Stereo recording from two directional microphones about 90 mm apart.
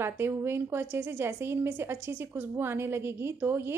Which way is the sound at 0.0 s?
30° right (ahead or behind).